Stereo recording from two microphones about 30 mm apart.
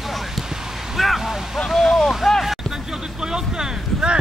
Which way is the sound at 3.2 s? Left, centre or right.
Right.